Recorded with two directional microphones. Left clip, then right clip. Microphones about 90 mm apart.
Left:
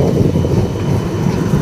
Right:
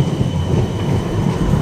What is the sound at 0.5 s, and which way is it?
Vehicle, centre (ahead or behind).